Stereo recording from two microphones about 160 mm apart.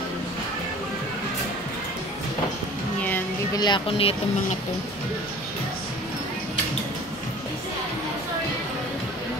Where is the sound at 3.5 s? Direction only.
30° left (ahead or behind).